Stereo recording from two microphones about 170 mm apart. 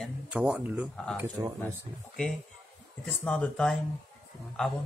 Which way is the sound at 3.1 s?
5° left (ahead or behind).